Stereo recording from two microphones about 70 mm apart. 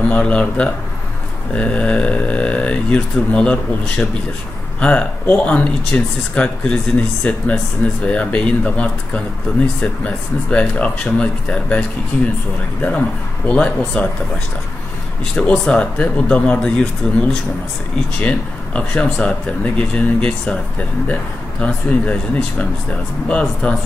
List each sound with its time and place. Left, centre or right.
0.1 s speech: centre
13.5 s speech: centre
15.3 s speech: centre